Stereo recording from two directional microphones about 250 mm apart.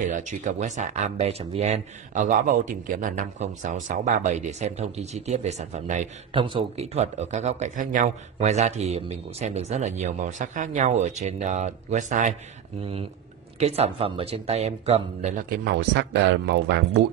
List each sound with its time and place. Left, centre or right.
0.0 s speech: right
13.6 s speech: right